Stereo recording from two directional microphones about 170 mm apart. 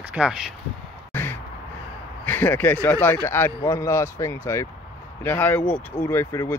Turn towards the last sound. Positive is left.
turn(degrees=15)  # may be behind; listen again after turning